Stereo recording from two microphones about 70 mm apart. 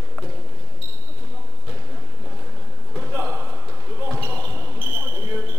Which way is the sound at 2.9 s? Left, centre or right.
Centre.